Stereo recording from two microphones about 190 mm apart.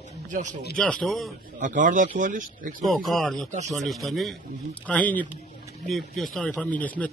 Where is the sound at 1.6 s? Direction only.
45° right (ahead or behind).